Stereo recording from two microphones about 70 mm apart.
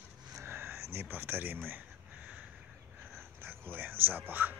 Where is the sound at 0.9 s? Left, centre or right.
Right.